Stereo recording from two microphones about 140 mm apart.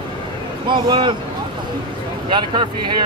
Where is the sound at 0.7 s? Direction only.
35° right (ahead or behind).